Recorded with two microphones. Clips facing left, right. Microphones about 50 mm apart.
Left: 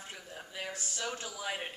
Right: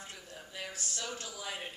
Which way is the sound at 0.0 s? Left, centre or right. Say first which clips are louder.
Left 2 dB; centre.